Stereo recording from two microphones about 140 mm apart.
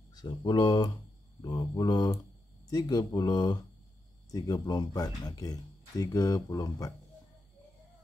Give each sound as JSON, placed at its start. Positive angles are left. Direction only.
{"t": 0.1, "sound": "speech", "side_deg": 30}